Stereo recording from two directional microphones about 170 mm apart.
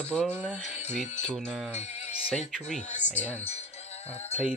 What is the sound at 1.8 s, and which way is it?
Music, 40° left (ahead or behind).